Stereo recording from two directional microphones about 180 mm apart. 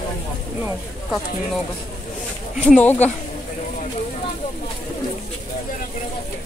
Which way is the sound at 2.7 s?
10° left (ahead or behind).